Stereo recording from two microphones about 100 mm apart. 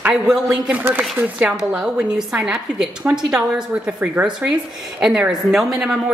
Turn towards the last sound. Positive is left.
turn(degrees=-5)  # may be behind; listen again after turning